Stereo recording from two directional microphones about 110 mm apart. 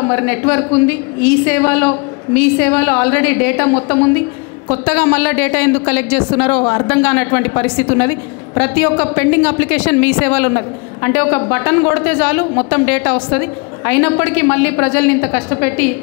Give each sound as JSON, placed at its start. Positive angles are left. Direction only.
{"t": 0.0, "sound": "a woman's voice", "side_deg": 20}